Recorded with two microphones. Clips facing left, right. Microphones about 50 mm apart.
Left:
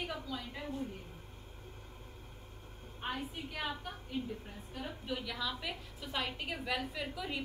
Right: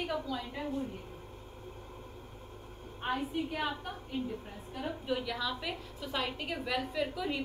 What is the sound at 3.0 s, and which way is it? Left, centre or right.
A woman's voice, centre.